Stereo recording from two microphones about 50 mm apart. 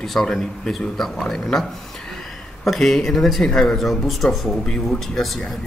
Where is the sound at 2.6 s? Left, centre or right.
Centre.